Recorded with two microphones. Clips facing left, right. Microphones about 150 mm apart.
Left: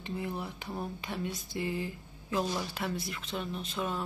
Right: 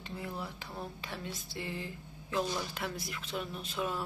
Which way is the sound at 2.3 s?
Centre (ahead or behind).